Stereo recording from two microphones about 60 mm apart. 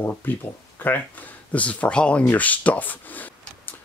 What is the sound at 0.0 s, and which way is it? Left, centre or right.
Speech, left.